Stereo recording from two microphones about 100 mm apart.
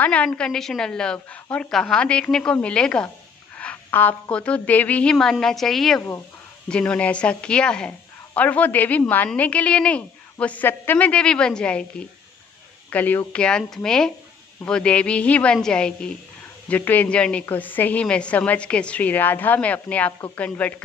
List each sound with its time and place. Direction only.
0.0 s a woman's voice: 15° left (ahead or behind)
12.9 s a woman's voice: 15° left (ahead or behind)